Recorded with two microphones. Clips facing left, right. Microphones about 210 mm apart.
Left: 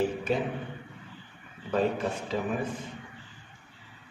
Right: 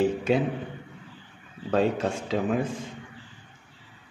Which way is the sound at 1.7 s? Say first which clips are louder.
Right 3 dB; 90° right.